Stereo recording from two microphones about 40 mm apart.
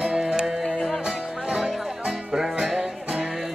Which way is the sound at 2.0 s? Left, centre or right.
Centre.